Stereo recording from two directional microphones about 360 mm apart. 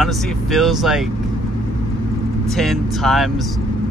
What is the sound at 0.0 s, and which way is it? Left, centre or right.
Speech, centre.